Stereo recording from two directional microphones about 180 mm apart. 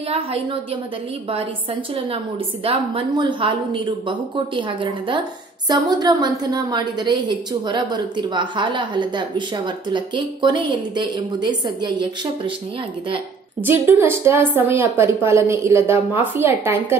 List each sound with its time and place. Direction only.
0.1 s a woman's voice: 30° right (ahead or behind)
2.6 s a woman's voice: 30° right (ahead or behind)
13.7 s a woman's voice: 10° right (ahead or behind)